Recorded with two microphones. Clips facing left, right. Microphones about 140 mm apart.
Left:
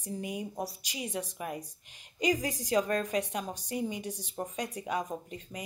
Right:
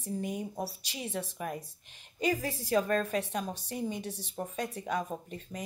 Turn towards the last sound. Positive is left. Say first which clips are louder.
# even
turn(degrees=10)  # may be behind; listen again after turning